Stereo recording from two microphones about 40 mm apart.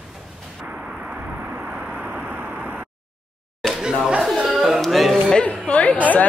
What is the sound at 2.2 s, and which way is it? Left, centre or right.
Vehicle, right.